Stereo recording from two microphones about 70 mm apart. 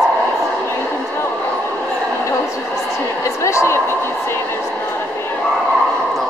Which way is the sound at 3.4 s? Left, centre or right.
Left.